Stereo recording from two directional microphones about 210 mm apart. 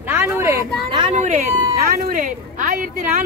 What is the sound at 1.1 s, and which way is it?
Speech, 35° right (ahead or behind).